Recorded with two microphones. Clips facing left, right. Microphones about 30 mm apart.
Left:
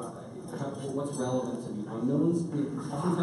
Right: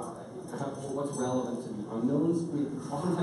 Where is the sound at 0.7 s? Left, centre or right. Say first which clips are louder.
Left 1 dB; left.